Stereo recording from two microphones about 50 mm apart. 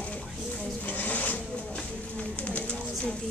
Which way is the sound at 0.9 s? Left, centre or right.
Left.